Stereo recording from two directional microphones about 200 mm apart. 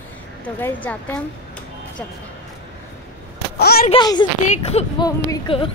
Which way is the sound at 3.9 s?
20° left (ahead or behind).